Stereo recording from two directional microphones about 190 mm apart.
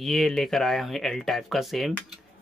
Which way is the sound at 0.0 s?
Centre (ahead or behind).